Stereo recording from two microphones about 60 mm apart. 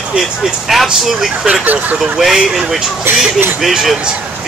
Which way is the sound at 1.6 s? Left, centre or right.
Right.